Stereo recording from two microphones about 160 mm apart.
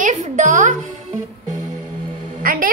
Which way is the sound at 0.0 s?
50° right (ahead or behind).